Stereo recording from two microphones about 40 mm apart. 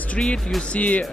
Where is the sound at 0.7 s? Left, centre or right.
Left.